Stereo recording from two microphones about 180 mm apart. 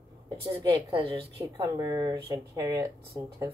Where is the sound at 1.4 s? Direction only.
20° right (ahead or behind).